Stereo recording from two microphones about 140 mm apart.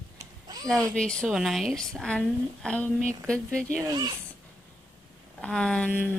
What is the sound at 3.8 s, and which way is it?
Speech, 30° right (ahead or behind).